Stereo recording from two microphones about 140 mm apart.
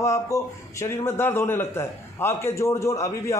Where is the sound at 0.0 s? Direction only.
20° left (ahead or behind).